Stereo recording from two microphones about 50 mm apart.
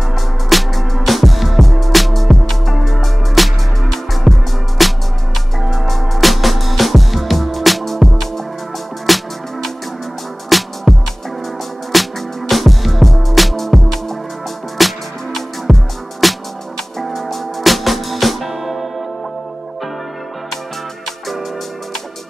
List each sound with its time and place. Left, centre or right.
0.1 s music: centre